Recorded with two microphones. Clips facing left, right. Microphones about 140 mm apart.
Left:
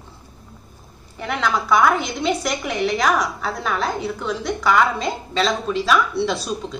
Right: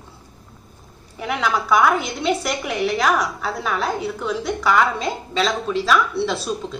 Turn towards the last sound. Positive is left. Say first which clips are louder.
# even
turn(degrees=0)  # may be behind; listen again after turning